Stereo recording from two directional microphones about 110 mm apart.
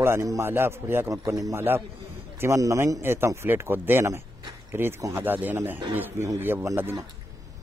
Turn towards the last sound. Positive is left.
turn(degrees=-20)  # may be behind; listen again after turning